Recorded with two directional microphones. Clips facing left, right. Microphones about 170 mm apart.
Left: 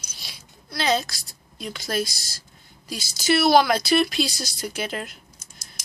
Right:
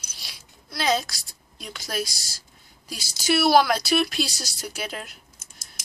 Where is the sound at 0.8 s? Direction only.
10° right (ahead or behind).